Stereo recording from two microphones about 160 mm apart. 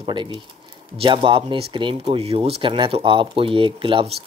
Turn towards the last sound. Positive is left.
turn(degrees=-35)  # may be behind; listen again after turning